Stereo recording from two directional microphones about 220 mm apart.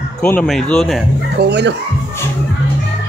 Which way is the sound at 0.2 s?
5° left (ahead or behind).